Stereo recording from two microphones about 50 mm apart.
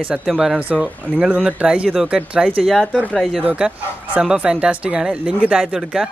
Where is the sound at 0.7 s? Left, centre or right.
Right.